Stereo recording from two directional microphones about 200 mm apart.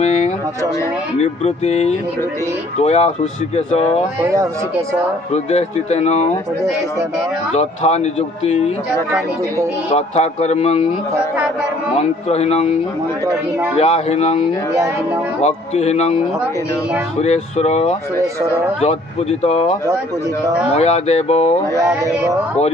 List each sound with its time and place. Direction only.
1.1 s speech: 30° left (ahead or behind)
4.2 s speech: 15° right (ahead or behind)
5.3 s speech: 35° left (ahead or behind)
7.5 s speech: 30° left (ahead or behind)
9.9 s speech: 35° left (ahead or behind)
12.0 s speech: 30° left (ahead or behind)
13.7 s speech: 30° left (ahead or behind)
15.4 s speech: 30° left (ahead or behind)
17.2 s speech: 35° left (ahead or behind)
20.7 s speech: 30° left (ahead or behind)
21.7 s speech: 15° right (ahead or behind)